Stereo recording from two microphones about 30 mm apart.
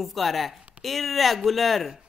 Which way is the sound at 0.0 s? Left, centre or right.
Centre.